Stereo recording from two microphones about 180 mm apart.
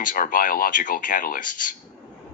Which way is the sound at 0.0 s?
50° left (ahead or behind).